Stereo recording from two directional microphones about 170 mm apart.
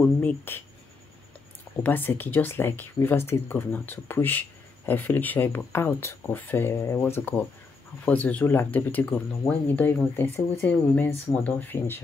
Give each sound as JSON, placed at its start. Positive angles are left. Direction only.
{"t": 0.0, "sound": "speech", "side_deg": 10}
{"t": 1.8, "sound": "speech", "side_deg": 10}